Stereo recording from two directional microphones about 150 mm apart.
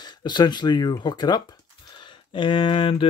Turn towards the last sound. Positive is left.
turn(degrees=35)  # may be behind; listen again after turning